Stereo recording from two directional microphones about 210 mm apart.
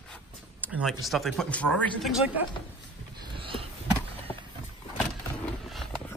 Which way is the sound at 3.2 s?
25° right (ahead or behind).